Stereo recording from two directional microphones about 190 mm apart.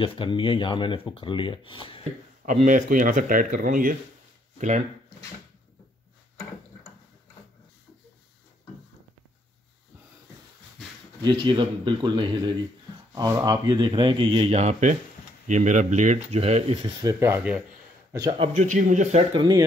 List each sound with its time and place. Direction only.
0.0 s speech: 25° left (ahead or behind)
2.4 s speech: 40° right (ahead or behind)
11.2 s speech: 25° right (ahead or behind)
17.2 s speech: 10° right (ahead or behind)
18.1 s speech: 20° right (ahead or behind)
18.5 s speech: 40° right (ahead or behind)